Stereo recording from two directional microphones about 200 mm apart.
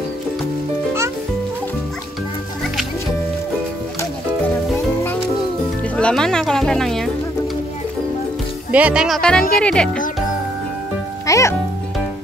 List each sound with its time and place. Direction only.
5.9 s speech: 5° left (ahead or behind)
8.7 s speech: 5° right (ahead or behind)
11.2 s a child's voice: 15° left (ahead or behind)